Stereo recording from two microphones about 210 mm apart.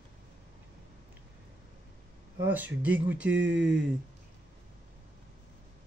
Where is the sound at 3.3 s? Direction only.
55° right (ahead or behind).